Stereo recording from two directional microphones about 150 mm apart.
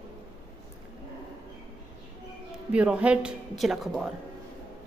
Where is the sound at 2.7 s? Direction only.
10° right (ahead or behind).